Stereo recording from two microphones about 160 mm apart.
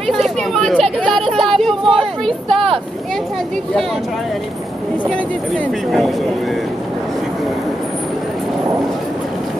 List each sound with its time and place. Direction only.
0.0 s speech: centre (ahead or behind)
5.1 s speech: centre (ahead or behind)